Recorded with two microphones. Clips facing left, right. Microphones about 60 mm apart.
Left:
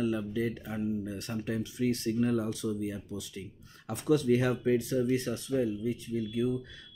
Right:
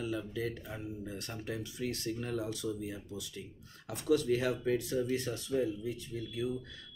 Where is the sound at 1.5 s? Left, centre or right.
Left.